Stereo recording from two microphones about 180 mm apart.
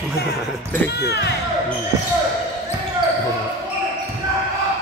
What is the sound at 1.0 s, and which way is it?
Speech, 65° left (ahead or behind).